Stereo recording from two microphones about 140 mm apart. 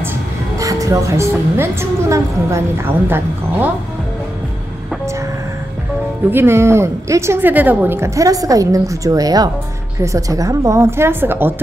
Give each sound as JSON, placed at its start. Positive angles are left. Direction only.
{"t": 0.6, "sound": "a woman's voice", "side_deg": -25}
{"t": 6.3, "sound": "a woman's voice", "side_deg": -20}